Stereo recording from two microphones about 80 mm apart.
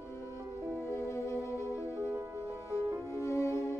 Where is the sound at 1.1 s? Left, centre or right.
Left.